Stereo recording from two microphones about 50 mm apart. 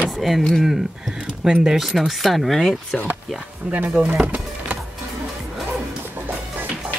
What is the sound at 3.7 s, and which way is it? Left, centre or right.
Speech, right.